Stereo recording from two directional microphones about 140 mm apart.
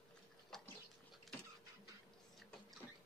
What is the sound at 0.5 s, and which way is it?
Dog, 5° left (ahead or behind).